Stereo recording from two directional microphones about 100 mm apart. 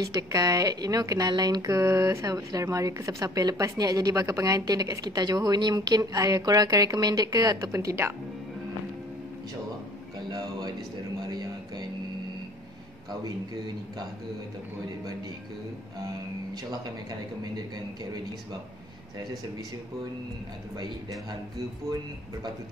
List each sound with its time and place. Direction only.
0.0 s speech: 35° right (ahead or behind)
10.1 s a sound: 40° right (ahead or behind)
20.7 s a man's voice: 45° right (ahead or behind)